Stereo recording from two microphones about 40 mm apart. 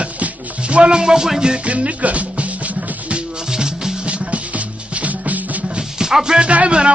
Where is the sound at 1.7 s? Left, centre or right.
Right.